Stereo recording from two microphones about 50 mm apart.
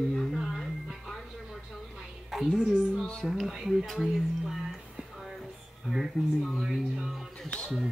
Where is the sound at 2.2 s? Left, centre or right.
Centre.